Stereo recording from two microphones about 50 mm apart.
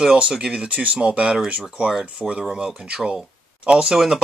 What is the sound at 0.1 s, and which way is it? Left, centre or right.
Speech, centre.